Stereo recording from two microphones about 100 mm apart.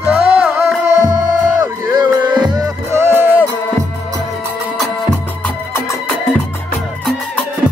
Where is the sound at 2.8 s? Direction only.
25° right (ahead or behind).